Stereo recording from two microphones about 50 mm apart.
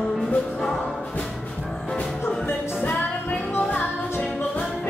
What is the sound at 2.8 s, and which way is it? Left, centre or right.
Music, left.